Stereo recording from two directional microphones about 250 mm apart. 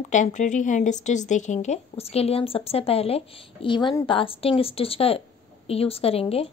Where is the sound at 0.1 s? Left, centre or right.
Left.